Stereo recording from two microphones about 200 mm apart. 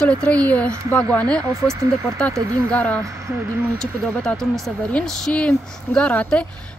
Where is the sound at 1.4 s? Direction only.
15° right (ahead or behind).